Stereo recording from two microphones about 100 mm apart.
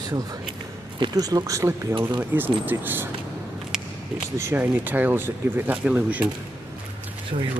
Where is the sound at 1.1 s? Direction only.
35° right (ahead or behind).